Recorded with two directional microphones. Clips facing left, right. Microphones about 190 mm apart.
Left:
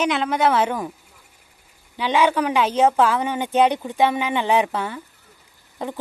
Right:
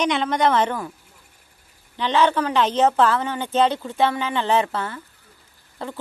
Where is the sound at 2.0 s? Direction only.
10° left (ahead or behind).